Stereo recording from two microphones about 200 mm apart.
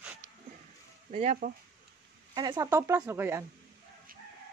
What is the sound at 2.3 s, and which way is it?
Speech, 20° right (ahead or behind).